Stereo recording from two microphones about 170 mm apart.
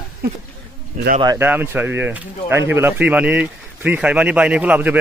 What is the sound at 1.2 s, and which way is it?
Speech, 15° right (ahead or behind).